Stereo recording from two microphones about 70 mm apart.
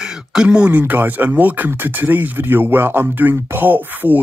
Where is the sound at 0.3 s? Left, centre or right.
Centre.